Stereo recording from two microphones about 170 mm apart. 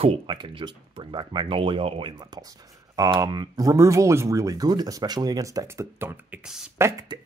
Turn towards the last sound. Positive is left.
turn(degrees=-20)  # may be behind; listen again after turning